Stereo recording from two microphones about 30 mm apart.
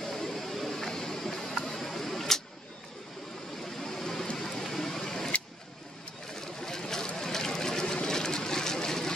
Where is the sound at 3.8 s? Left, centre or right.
Centre.